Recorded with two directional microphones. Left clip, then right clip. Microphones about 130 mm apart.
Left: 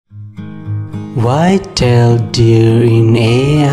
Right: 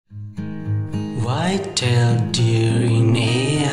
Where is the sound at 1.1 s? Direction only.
50° left (ahead or behind).